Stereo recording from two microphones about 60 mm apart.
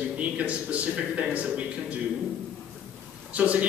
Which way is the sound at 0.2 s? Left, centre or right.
Right.